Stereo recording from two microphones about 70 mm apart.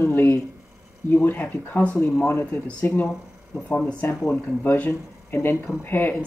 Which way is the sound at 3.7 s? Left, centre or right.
Centre.